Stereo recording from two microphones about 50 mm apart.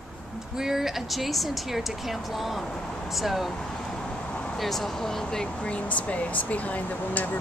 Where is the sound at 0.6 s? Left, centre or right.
Centre.